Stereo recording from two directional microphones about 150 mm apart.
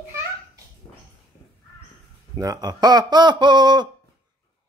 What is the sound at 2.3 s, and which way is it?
Speech, 25° right (ahead or behind).